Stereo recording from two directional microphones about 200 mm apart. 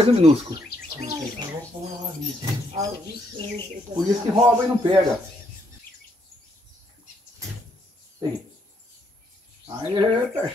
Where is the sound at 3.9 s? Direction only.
40° right (ahead or behind).